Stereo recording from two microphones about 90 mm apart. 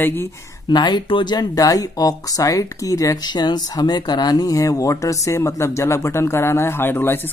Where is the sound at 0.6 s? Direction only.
55° left (ahead or behind).